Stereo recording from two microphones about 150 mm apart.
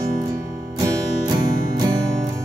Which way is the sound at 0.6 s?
25° right (ahead or behind).